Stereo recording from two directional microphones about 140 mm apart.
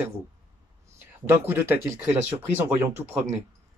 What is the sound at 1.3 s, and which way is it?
Speech, 15° right (ahead or behind).